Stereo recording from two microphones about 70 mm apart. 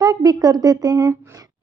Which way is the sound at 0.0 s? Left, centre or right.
Right.